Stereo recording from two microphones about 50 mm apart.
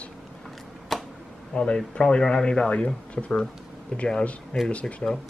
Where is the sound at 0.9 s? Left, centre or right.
Centre.